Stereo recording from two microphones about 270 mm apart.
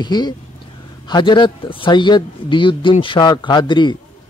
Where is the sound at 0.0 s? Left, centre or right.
Centre.